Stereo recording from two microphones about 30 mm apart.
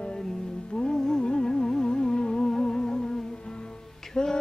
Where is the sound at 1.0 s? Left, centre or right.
Centre.